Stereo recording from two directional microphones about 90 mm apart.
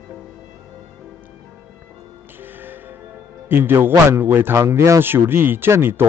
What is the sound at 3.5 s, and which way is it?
A man's voice, 25° right (ahead or behind).